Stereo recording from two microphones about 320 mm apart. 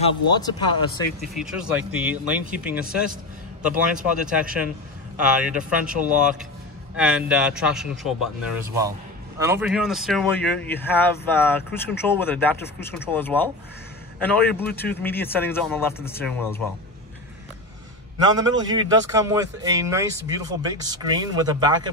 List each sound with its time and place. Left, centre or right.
0.0 s speech: centre
1.3 s speech: centre
5.9 s speech: right
7.0 s speech: centre
9.4 s speech: centre
18.4 s speech: centre